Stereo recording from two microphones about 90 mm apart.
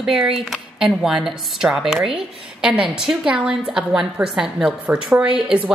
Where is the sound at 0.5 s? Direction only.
5° right (ahead or behind).